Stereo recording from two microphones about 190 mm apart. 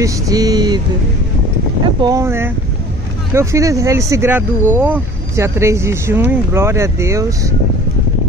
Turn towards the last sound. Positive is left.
turn(degrees=-15)  # may be behind; listen again after turning